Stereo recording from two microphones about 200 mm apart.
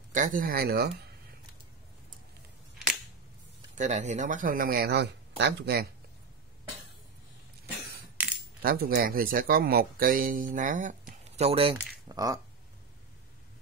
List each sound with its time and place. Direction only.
0.1 s speech: 40° right (ahead or behind)
3.7 s speech: 35° right (ahead or behind); by 5.9 s 55° right (ahead or behind)
8.6 s speech: 50° right (ahead or behind); by 11.7 s 30° right (ahead or behind)
11.8 s speech: 15° right (ahead or behind)